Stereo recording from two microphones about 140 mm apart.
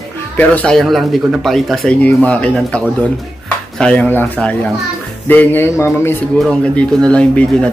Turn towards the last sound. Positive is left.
turn(degrees=10)  # may be behind; listen again after turning